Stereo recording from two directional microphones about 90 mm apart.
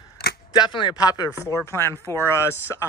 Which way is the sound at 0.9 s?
45° left (ahead or behind).